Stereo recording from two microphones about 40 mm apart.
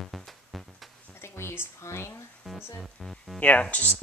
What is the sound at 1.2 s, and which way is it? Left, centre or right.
Speech, left.